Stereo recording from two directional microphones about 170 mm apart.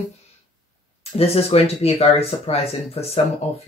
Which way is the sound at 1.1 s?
35° left (ahead or behind).